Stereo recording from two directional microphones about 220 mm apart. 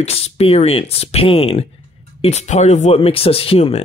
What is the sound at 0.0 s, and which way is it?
Speech, 30° left (ahead or behind).